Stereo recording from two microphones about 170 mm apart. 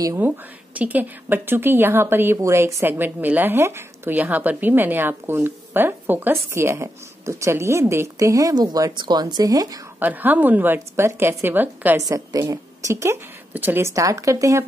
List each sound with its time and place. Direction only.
0.0 s speech: 20° right (ahead or behind)
9.9 s speech: 10° right (ahead or behind)